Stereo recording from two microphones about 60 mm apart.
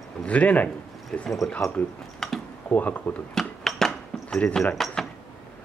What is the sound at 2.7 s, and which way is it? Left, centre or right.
Speech, left.